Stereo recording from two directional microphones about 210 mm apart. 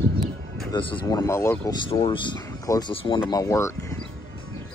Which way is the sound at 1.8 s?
25° left (ahead or behind).